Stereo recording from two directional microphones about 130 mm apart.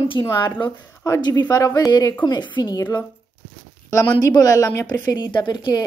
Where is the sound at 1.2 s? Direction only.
35° left (ahead or behind).